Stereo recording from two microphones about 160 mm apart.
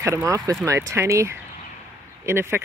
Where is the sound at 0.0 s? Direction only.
20° right (ahead or behind).